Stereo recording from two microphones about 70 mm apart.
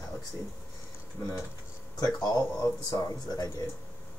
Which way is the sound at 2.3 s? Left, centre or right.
Left.